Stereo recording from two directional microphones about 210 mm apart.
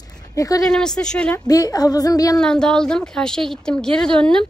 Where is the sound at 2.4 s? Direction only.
5° left (ahead or behind).